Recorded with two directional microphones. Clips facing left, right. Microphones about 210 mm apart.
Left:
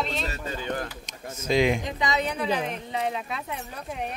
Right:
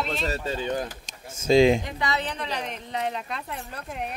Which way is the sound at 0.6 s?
20° right (ahead or behind).